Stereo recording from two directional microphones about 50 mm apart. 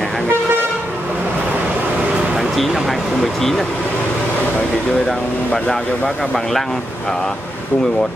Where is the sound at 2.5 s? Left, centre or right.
Centre.